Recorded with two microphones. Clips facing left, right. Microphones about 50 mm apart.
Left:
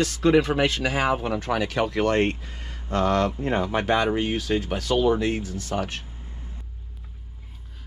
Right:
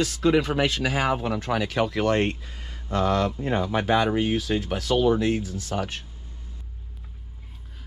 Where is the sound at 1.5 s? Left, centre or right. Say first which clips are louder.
Even; left.